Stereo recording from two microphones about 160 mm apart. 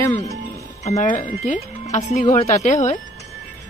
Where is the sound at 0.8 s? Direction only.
45° left (ahead or behind).